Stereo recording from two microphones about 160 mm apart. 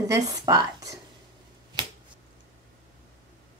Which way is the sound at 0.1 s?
25° right (ahead or behind).